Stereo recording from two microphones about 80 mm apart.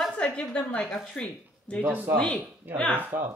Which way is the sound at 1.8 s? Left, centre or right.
Right.